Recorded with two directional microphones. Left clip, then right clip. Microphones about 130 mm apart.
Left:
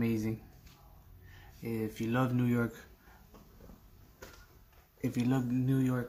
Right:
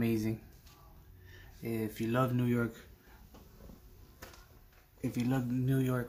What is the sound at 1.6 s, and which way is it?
Speech, centre (ahead or behind).